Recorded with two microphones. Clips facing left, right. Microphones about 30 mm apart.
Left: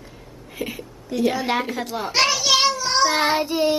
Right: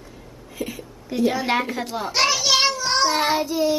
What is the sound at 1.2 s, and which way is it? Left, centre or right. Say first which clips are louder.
Speech: right 1 dB; centre.